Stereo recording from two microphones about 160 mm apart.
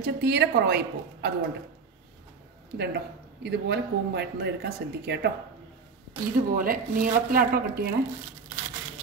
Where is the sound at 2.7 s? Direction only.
90° right.